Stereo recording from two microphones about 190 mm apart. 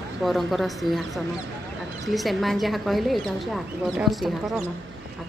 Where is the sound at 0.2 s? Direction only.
Centre (ahead or behind).